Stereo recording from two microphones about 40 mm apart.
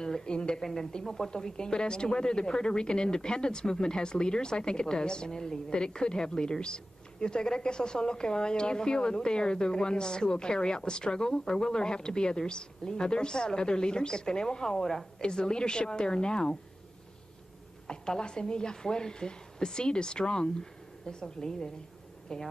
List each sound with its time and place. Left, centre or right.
0.0 s a woman's voice: centre
1.3 s speech: centre
17.8 s speech: left